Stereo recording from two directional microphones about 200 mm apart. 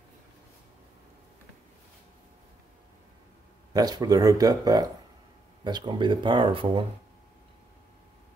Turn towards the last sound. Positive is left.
turn(degrees=-25)  # may be behind; listen again after turning